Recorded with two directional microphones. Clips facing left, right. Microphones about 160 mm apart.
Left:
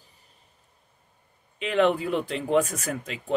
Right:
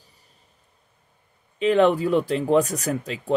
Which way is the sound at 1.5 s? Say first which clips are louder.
Right 5 dB; 35° right (ahead or behind).